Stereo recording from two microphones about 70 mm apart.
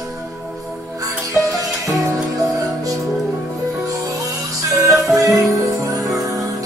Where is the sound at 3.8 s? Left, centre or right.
Right.